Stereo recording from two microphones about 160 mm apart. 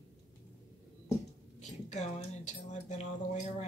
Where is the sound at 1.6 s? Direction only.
45° left (ahead or behind).